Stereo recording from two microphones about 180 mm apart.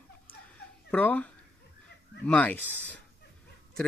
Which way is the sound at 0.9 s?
10° left (ahead or behind).